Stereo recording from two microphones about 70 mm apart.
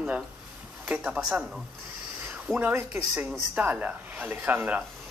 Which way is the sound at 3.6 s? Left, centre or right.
Right.